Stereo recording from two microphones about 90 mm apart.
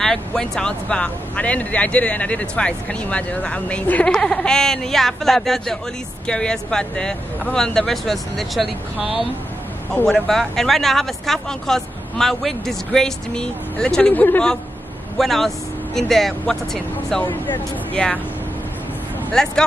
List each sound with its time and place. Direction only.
0.0 s speech: 5° left (ahead or behind)
14.1 s speech: 20° left (ahead or behind)
15.1 s speech: 5° left (ahead or behind)
19.3 s speech: 5° left (ahead or behind)